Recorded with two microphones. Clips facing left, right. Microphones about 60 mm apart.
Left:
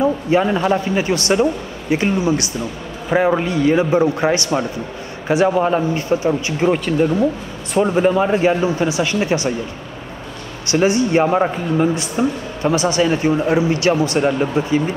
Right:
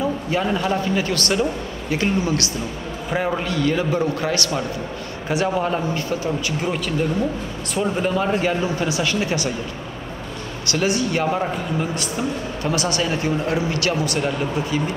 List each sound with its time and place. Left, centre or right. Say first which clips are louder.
0.0 s a man's voice: left 6 dB; left
5.3 s a man's voice: left 6 dB; centre
5.6 s a man's voice: left 5 dB; centre
10.7 s a man's voice: left 6 dB; left